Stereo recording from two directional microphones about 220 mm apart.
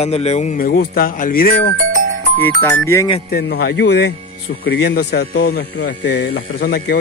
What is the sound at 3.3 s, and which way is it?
A man's voice, 45° left (ahead or behind).